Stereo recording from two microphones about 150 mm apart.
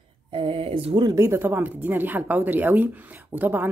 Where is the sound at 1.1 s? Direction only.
15° right (ahead or behind).